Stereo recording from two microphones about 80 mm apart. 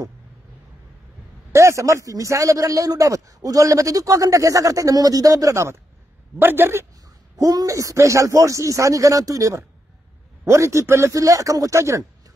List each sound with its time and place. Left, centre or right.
1.5 s a man's voice: right
6.4 s a man's voice: right
7.3 s a man's voice: right